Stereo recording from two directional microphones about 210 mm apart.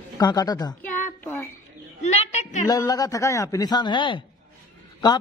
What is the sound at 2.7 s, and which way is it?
Speech, 15° left (ahead or behind).